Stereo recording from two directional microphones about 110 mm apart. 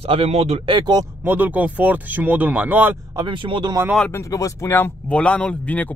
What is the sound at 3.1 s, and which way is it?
Speech, 45° right (ahead or behind).